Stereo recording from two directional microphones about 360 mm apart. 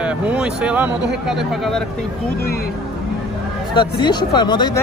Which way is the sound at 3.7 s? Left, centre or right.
Centre.